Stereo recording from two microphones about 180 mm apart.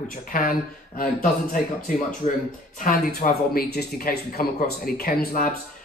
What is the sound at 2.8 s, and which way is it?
Speech, 55° left (ahead or behind).